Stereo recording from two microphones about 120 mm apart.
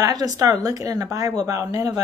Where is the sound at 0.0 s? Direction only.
30° right (ahead or behind).